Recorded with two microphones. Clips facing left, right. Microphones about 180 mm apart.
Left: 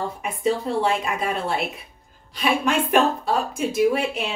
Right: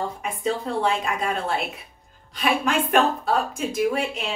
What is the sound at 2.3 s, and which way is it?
A woman's voice, centre (ahead or behind).